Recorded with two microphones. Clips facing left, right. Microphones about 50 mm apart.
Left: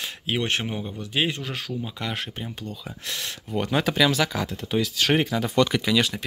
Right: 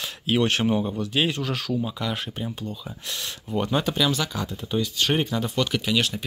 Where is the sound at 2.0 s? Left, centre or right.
Left.